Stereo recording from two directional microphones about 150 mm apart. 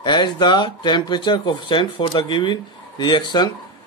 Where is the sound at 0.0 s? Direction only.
30° left (ahead or behind).